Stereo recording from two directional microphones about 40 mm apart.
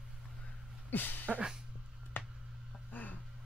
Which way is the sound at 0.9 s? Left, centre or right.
Left.